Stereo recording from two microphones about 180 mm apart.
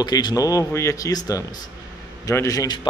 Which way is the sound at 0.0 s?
20° left (ahead or behind).